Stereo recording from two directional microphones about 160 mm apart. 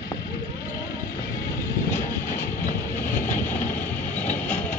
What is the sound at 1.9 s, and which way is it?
Vehicle, 15° left (ahead or behind).